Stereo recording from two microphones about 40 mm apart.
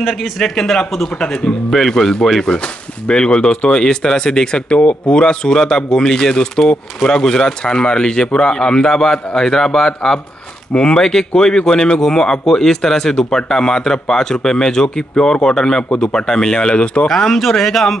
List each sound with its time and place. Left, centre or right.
0.4 s a man's voice: centre
1.7 s a man's voice: centre
2.4 s speech: left
10.7 s a man's voice: left
17.1 s a man's voice: centre